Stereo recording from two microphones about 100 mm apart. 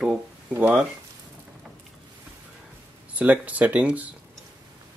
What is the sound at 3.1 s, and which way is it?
Speech, 15° right (ahead or behind).